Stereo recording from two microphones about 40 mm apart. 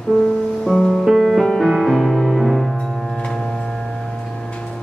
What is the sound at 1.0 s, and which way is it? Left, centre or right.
Music, centre.